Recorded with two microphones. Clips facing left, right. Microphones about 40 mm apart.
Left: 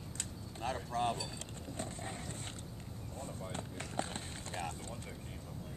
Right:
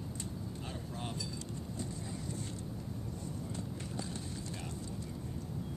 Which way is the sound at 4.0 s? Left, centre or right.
Left.